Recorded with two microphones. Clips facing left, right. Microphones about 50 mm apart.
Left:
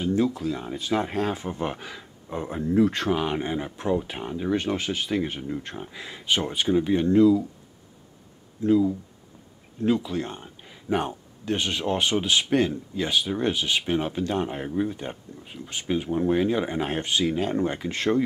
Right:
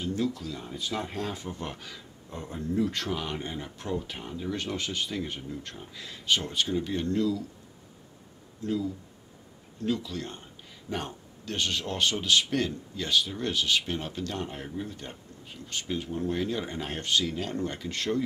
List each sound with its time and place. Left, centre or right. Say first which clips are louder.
0.0 s speech: left 7 dB; left
5.5 s speech: left 7 dB; left
8.6 s speech: left 10 dB; left